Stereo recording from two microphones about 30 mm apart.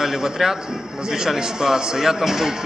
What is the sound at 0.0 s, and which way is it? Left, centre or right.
Speech, centre.